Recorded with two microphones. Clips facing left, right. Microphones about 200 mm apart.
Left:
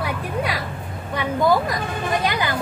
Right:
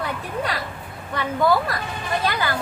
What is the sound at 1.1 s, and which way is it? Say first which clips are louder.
Speech: left 1 dB; 15° left (ahead or behind).